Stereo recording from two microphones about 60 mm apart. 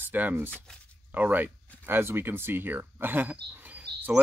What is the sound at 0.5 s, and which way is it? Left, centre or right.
Speech, centre.